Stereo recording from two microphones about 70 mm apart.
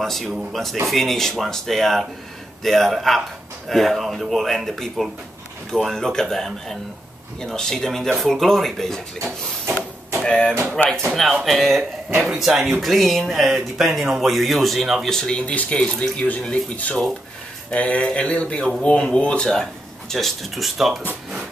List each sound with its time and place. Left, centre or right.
0.0 s speech: centre
15.0 s speech: centre